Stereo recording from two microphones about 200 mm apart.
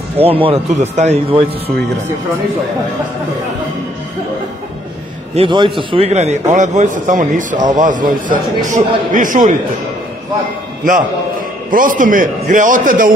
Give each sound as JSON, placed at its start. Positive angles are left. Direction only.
{"t": 0.2, "sound": "speech", "side_deg": -30}
{"t": 5.3, "sound": "a man's voice", "side_deg": -25}
{"t": 11.7, "sound": "a man's voice", "side_deg": -45}